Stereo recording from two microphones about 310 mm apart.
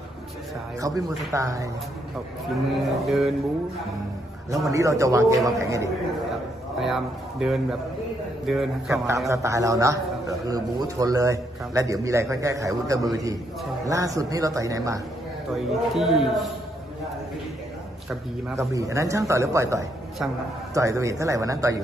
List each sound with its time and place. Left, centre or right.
0.7 s a man's voice: centre
2.8 s speech: centre
4.6 s a man's voice: centre
18.6 s a man's voice: centre